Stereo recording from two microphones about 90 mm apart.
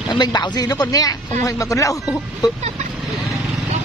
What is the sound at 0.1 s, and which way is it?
A man's voice, 50° left (ahead or behind).